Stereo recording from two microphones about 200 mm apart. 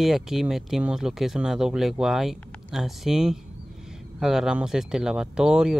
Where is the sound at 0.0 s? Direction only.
Centre (ahead or behind).